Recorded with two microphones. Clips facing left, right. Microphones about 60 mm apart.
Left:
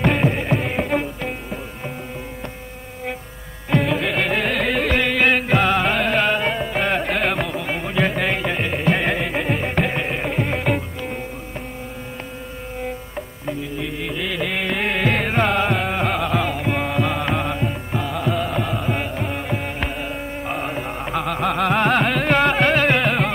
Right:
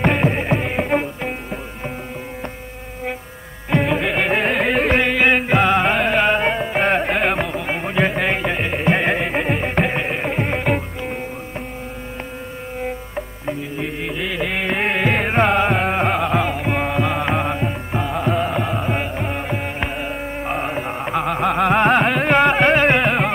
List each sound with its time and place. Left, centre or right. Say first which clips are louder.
0.0 s music: right 1 dB; centre
3.7 s music: right 1 dB; centre
5.1 s music: right 2 dB; centre
13.1 s music: right 2 dB; centre